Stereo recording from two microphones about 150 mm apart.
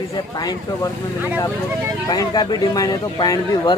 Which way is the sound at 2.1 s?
25° left (ahead or behind).